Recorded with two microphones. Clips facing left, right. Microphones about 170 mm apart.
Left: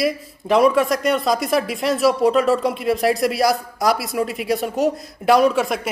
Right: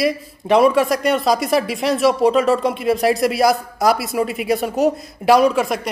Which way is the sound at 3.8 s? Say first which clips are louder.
Right 2 dB; centre (ahead or behind).